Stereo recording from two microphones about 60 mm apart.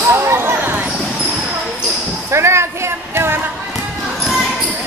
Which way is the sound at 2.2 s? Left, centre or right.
Right.